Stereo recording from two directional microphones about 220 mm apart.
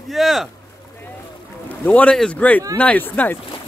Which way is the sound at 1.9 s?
5° left (ahead or behind).